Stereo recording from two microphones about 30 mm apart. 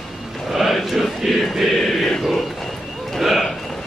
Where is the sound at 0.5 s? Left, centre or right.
Centre.